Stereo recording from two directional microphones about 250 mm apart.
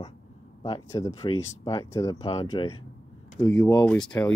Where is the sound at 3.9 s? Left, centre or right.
Centre.